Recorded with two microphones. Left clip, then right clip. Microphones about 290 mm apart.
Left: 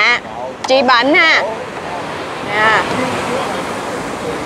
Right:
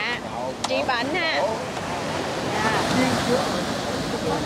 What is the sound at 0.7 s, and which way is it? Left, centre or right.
Speech, left.